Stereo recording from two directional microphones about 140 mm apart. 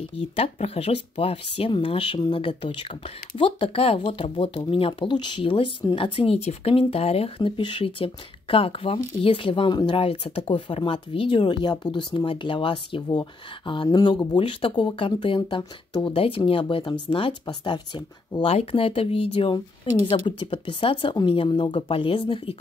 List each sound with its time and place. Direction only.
0.4 s speech: 45° left (ahead or behind)